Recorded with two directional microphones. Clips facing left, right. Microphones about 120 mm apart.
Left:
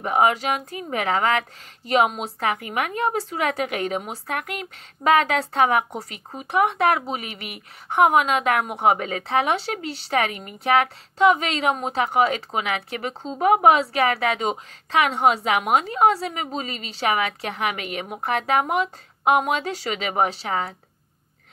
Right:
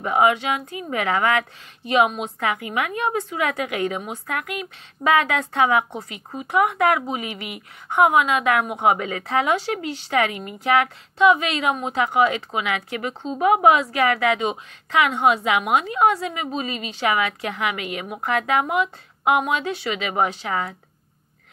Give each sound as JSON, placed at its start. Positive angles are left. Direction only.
{"t": 0.0, "sound": "a woman's voice", "side_deg": 35}